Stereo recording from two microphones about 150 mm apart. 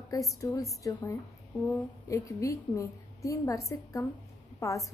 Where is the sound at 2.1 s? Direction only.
20° left (ahead or behind).